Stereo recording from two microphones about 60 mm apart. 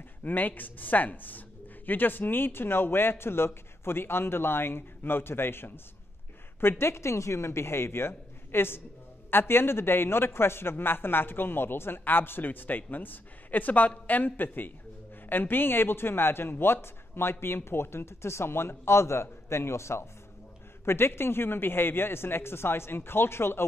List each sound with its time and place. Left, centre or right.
0.2 s a man's voice: left